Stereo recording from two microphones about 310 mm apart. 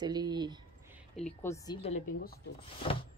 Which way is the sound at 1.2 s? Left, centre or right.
Centre.